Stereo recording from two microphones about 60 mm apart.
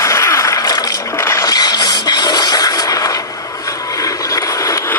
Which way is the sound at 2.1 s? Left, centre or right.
Left.